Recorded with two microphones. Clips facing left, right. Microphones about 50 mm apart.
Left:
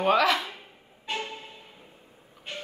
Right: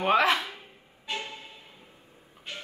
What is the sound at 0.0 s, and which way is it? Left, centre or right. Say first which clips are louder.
Speech: left 1 dB; centre.